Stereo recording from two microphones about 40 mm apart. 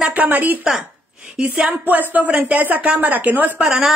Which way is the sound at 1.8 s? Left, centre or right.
Right.